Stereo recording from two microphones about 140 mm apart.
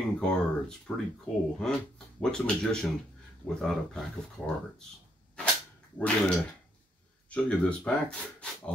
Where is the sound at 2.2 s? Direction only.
5° left (ahead or behind).